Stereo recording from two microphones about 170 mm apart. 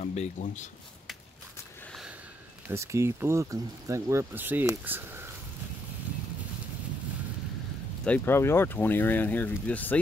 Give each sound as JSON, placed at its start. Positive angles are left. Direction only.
{"t": 0.0, "sound": "speech", "side_deg": 40}
{"t": 1.9, "sound": "a sound", "side_deg": 0}
{"t": 2.7, "sound": "speech", "side_deg": -15}
{"t": 8.0, "sound": "speech", "side_deg": 10}